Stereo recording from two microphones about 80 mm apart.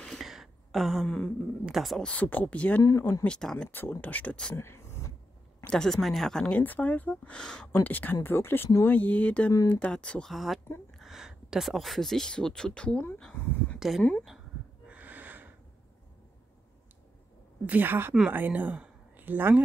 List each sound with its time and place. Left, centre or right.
0.0 s a sound: centre
1.7 s speech: centre
2.0 s speech: centre
2.8 s speech: left
3.3 s speech: centre
3.7 s speech: left
4.6 s a sound: left
5.7 s speech: centre
6.6 s speech: left
10.3 s speech: centre
13.4 s a sound: left
13.7 s speech: centre
14.9 s snort: right
17.6 s speech: right